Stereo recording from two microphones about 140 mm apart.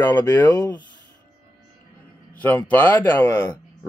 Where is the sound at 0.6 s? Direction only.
30° left (ahead or behind).